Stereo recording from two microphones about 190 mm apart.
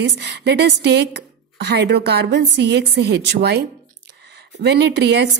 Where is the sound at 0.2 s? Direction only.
65° right (ahead or behind).